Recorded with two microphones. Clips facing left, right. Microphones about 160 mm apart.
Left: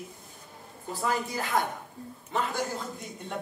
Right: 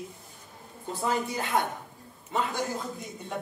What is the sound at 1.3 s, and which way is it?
Speech, 25° right (ahead or behind).